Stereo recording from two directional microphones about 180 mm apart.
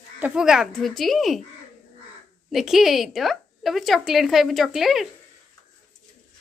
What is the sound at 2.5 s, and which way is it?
Speech, centre (ahead or behind).